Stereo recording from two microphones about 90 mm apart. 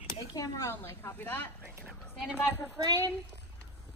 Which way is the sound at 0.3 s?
50° left (ahead or behind).